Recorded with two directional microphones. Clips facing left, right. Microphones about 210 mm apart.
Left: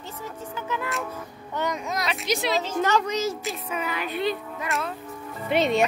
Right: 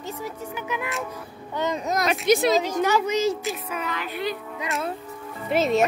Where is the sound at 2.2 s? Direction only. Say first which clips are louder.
Right 7 dB; 50° right (ahead or behind).